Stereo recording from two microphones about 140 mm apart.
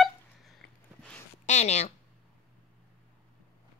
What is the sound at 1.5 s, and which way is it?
Speech, 55° left (ahead or behind).